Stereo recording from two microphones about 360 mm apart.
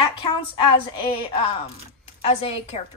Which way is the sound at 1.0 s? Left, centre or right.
Centre.